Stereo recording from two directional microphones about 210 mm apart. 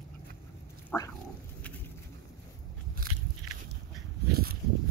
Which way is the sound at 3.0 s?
45° right (ahead or behind).